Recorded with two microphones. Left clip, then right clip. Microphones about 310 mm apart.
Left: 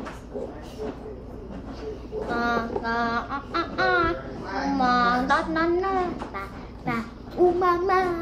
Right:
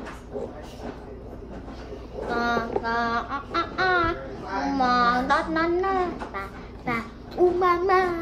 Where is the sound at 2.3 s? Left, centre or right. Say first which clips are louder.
Right 1 dB; centre.